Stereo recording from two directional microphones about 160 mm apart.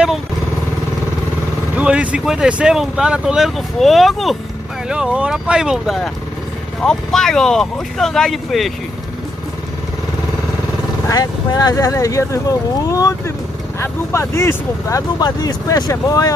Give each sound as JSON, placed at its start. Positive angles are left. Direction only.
{"t": 1.8, "sound": "speech", "side_deg": -10}
{"t": 11.1, "sound": "speech", "side_deg": 20}